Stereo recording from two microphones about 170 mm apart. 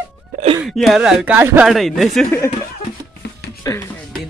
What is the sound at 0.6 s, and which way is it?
Speech, centre (ahead or behind).